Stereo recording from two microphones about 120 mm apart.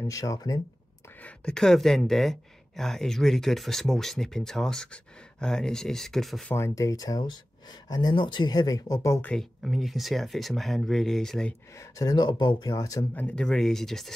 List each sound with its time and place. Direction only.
0.0 s speech: 30° left (ahead or behind)
1.2 s speech: 5° left (ahead or behind)
6.5 s speech: 25° left (ahead or behind)
9.2 s speech: 5° left (ahead or behind)
11.8 s speech: 30° left (ahead or behind)
13.1 s speech: 10° left (ahead or behind)